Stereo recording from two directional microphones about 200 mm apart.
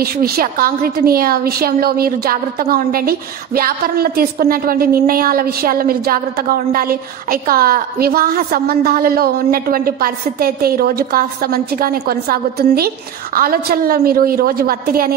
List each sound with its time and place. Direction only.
0.0 s a woman's voice: 50° right (ahead or behind)